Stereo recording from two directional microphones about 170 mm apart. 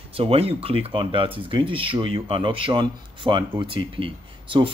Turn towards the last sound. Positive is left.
turn(degrees=-30)  # may be behind; listen again after turning